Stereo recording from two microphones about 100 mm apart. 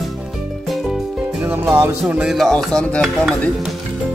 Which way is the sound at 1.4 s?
20° right (ahead or behind).